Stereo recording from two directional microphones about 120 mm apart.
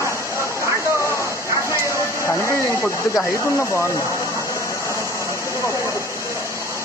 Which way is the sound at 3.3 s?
25° left (ahead or behind).